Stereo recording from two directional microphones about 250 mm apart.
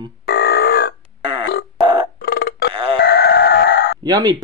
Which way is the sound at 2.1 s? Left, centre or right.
Left.